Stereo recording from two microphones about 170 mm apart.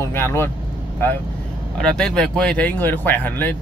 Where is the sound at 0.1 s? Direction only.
15° left (ahead or behind).